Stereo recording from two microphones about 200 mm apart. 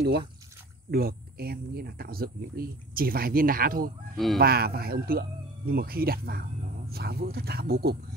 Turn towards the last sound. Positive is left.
turn(degrees=-50)  # may be behind; listen again after turning